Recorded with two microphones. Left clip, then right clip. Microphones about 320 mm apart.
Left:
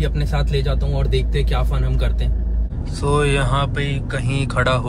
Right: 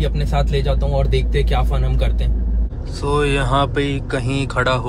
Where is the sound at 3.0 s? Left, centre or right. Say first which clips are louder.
Even; centre.